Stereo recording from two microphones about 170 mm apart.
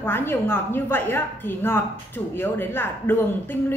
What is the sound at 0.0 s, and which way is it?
A woman's voice, 15° left (ahead or behind).